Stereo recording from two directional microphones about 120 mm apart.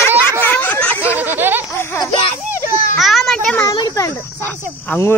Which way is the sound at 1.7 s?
20° left (ahead or behind).